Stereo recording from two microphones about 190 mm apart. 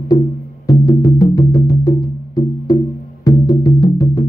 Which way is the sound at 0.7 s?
20° left (ahead or behind).